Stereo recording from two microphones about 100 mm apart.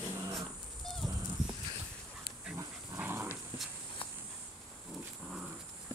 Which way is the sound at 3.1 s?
25° right (ahead or behind).